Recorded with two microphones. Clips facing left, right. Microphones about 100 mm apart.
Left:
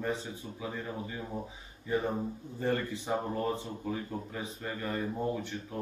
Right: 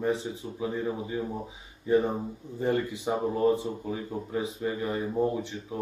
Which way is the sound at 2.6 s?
15° right (ahead or behind).